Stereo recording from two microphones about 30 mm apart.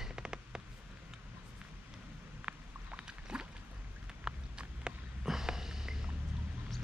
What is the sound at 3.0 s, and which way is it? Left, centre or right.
Boat, right.